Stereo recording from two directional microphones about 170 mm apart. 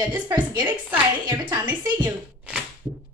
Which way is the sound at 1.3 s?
25° right (ahead or behind).